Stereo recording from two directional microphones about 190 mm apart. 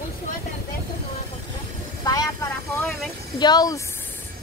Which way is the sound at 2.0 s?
20° left (ahead or behind).